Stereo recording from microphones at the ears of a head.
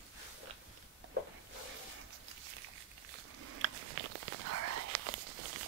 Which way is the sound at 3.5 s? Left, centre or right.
Right.